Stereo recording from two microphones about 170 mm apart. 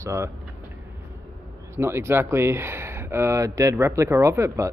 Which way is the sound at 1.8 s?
15° right (ahead or behind).